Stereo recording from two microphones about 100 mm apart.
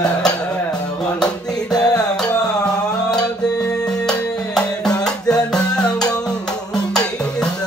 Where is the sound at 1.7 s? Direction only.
40° left (ahead or behind).